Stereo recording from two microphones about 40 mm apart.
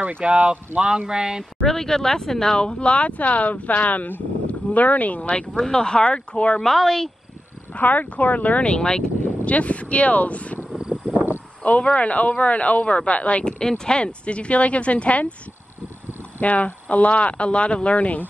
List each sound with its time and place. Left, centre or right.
0.2 s speech: right
1.6 s speech: centre; by 5.3 s left
5.5 s speech: centre
6.6 s speech: centre
7.7 s speech: left
8.7 s speech: left
9.4 s speech: left
10.9 s a sound: right
11.6 s speech: left
13.5 s speech: centre
16.3 s speech: left